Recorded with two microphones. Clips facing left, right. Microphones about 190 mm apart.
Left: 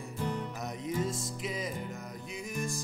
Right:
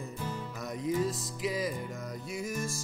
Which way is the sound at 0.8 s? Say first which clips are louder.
Right 4 dB; centre (ahead or behind).